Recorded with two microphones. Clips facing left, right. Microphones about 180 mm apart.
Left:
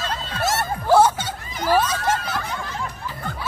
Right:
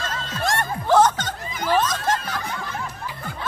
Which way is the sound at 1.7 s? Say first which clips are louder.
Left 1 dB; 10° left (ahead or behind).